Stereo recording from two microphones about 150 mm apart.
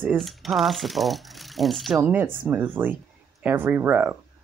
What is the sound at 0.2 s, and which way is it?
Speech, centre (ahead or behind).